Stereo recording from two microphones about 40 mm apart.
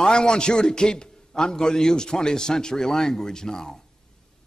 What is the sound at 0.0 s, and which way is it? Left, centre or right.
A man's voice, left.